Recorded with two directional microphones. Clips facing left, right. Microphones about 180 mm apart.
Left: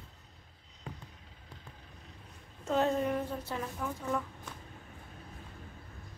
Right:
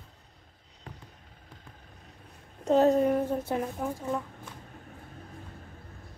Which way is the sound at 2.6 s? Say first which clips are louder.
Right 8 dB; 40° right (ahead or behind).